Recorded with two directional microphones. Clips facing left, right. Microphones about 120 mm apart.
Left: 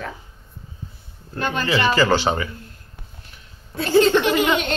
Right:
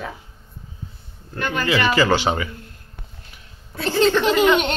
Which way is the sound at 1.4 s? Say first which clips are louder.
Even; 30° left (ahead or behind).